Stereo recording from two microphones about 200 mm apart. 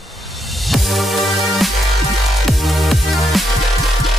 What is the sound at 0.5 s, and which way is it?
Music, centre (ahead or behind).